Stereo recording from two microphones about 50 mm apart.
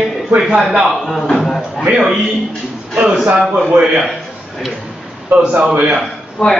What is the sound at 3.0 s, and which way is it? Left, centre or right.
Speech, centre.